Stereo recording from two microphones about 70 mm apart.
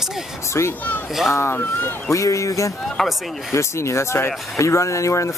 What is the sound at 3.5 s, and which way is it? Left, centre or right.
Speech, left.